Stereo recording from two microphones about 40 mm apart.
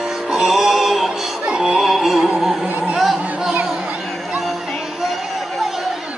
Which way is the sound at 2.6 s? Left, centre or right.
Right.